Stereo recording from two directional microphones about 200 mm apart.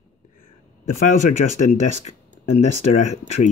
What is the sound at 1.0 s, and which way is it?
Speech, 40° left (ahead or behind).